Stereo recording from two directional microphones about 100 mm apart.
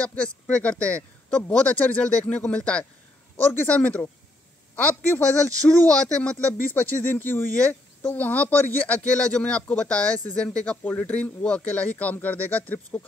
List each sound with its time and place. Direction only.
0.0 s speech: 10° left (ahead or behind)